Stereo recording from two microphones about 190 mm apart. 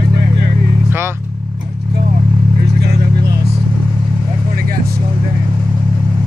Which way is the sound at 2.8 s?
60° right (ahead or behind).